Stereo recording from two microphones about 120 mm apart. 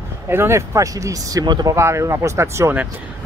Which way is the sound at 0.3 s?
25° right (ahead or behind).